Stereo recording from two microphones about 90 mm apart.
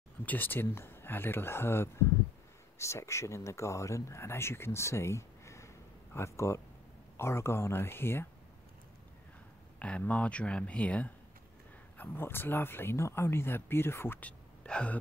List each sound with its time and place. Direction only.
0.2 s speech: 20° left (ahead or behind)
9.8 s speech: 15° left (ahead or behind)
12.0 s speech: 25° left (ahead or behind)
14.6 s speech: 10° left (ahead or behind)